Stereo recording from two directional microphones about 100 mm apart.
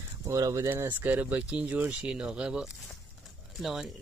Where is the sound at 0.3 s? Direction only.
30° right (ahead or behind).